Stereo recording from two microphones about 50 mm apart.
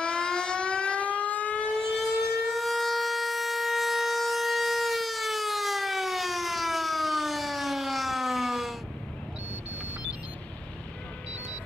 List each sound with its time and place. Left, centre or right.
0.0 s civil defense siren: centre
2.0 s civil defense siren: centre